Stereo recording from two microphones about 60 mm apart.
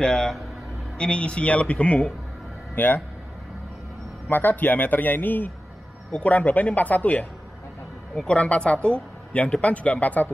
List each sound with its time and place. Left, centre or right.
0.0 s speech: centre
2.7 s a man's voice: left
4.3 s a man's voice: left
8.3 s speech: centre